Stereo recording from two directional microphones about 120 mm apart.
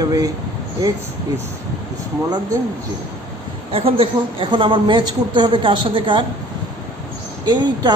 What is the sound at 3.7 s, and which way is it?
Speech, 50° right (ahead or behind).